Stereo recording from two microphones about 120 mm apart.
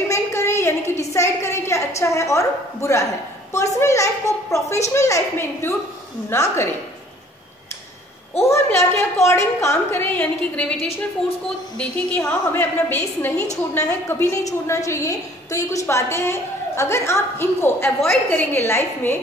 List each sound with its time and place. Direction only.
0.1 s a sound: 25° left (ahead or behind)
2.0 s a woman's voice: 25° left (ahead or behind)
8.4 s a woman's voice: 20° left (ahead or behind)
12.3 s a woman's voice: 15° left (ahead or behind)